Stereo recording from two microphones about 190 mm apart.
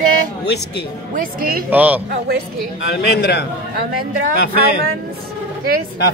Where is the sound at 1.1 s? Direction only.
50° right (ahead or behind).